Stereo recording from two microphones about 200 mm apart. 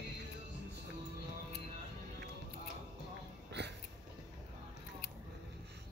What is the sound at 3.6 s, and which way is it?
Dog, 60° right (ahead or behind).